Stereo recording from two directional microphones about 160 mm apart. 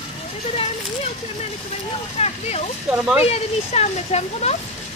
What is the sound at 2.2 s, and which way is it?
Speech, 40° left (ahead or behind).